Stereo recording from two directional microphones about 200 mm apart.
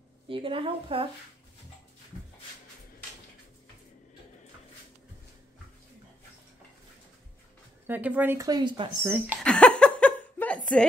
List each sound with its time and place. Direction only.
0.3 s a woman's voice: 25° right (ahead or behind)
7.8 s a woman's voice: 10° right (ahead or behind)
9.0 s a woman's voice: 10° right (ahead or behind)
9.4 s a sound: 5° left (ahead or behind)